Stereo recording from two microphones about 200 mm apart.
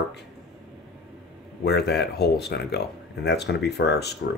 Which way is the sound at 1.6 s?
55° left (ahead or behind).